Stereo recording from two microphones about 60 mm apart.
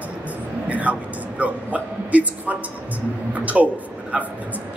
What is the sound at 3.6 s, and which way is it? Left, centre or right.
Speech, centre.